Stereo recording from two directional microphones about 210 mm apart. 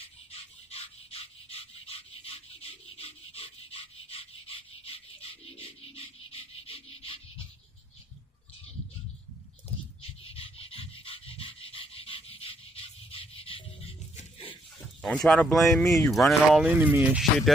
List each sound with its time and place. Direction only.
0.0 s a sound: 30° left (ahead or behind)
5.9 s music: 25° left (ahead or behind)
6.6 s rub: 25° left (ahead or behind)
10.0 s dog: 25° left (ahead or behind)
15.2 s speech: centre (ahead or behind)